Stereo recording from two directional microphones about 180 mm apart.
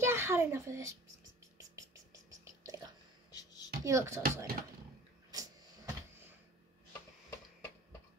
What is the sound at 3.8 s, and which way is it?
Speech, 15° right (ahead or behind).